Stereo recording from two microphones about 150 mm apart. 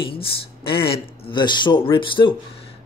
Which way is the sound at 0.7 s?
35° left (ahead or behind).